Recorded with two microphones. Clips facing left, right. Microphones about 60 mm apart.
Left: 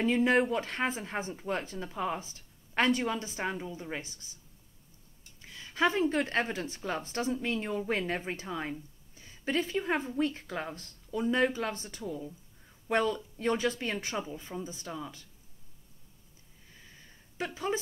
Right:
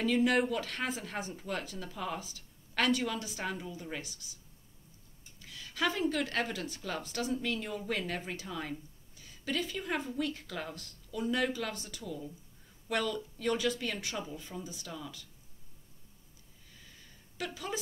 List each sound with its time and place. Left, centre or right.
0.0 s speech: left
5.4 s a woman's voice: left
17.4 s speech: left